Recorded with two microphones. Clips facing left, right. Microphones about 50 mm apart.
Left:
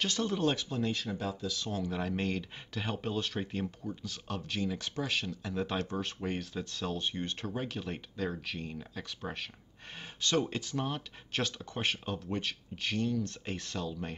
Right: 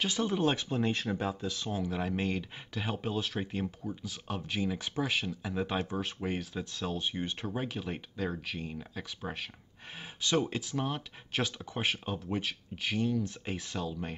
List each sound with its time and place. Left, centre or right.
0.0 s speech: centre
1.7 s speech: centre